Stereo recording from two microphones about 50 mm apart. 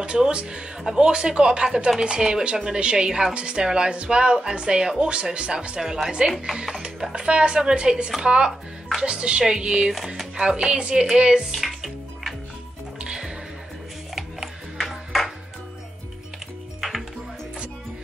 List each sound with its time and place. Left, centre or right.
0.0 s speech: right
5.8 s speech: centre
9.9 s speech: centre
11.5 s music: centre
13.0 s music: centre
14.1 s a sound: centre